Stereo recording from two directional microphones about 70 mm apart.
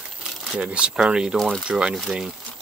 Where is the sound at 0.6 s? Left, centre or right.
Centre.